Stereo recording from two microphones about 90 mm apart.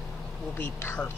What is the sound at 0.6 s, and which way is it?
Speech, 25° left (ahead or behind).